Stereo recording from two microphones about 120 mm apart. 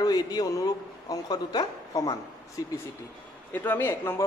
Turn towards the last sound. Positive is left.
turn(degrees=20)  # may be behind; listen again after turning